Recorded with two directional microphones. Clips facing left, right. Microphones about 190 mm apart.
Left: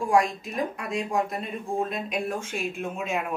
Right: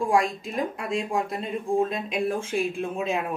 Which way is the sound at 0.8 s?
25° right (ahead or behind).